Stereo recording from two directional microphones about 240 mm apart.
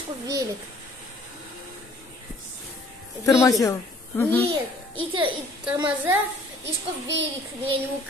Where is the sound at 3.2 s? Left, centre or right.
Centre.